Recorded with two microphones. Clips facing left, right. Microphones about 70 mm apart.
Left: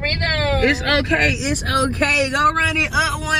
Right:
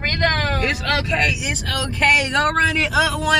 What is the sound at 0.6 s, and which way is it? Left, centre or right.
Speech, left.